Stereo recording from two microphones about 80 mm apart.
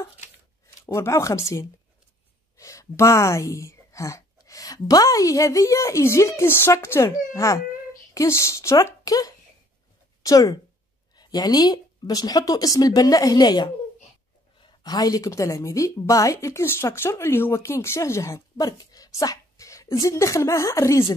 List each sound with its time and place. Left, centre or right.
0.8 s a woman's voice: left
9.0 s a woman's voice: left
14.9 s a woman's voice: left
18.6 s a woman's voice: left